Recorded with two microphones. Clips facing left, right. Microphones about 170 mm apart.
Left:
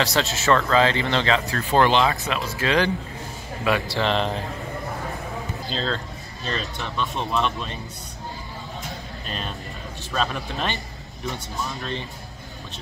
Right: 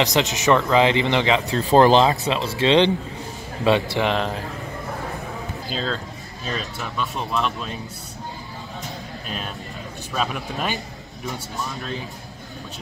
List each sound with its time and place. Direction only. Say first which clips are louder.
0.0 s a man's voice: right 3 dB; 15° right (ahead or behind)
1.7 s speech: right 5 dB; 35° right (ahead or behind)
4.1 s speech: even; centre (ahead or behind)
5.7 s speech: right 1 dB; 5° right (ahead or behind)
10.1 s a man's voice: even; 5° right (ahead or behind)